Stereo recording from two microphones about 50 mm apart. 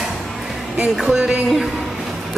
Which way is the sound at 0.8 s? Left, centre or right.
Centre.